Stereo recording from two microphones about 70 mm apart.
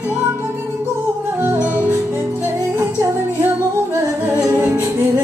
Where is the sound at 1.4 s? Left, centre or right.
Right.